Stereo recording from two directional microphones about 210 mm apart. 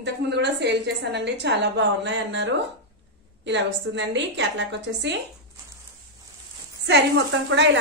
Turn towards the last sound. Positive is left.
turn(degrees=-60)  # may be behind; listen again after turning